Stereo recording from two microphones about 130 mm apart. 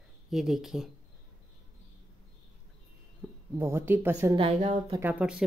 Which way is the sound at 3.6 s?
15° right (ahead or behind).